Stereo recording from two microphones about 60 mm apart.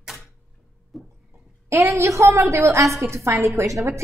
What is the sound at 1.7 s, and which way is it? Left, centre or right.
A woman's voice, right.